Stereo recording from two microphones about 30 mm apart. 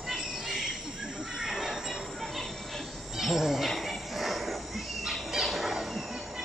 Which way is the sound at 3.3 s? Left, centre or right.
Centre.